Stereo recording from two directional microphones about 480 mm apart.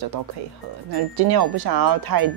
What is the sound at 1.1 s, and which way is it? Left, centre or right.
Speech, right.